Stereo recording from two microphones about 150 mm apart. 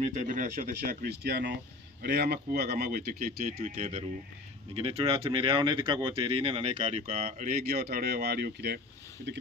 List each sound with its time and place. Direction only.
0.0 s speech: 50° right (ahead or behind); by 3.6 s 75° right (ahead or behind)
3.6 s speech: 55° right (ahead or behind)
4.7 s speech: 40° right (ahead or behind)
7.2 s speech: 70° right (ahead or behind); by 8.8 s 90° right